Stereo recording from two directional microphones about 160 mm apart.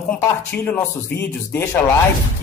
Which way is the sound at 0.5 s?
10° left (ahead or behind).